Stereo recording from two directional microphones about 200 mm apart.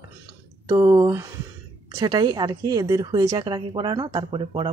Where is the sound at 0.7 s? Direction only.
20° right (ahead or behind).